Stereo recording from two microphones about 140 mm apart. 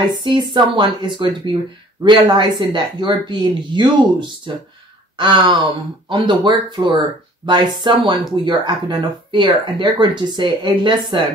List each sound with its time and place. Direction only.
0.2 s speech: 35° right (ahead or behind)